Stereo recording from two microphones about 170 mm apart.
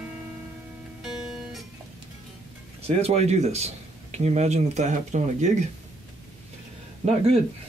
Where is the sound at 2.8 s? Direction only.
35° right (ahead or behind).